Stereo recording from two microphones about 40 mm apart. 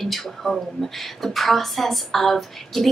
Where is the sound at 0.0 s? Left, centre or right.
Centre.